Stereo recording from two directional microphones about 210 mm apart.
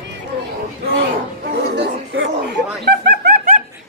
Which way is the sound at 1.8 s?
55° right (ahead or behind).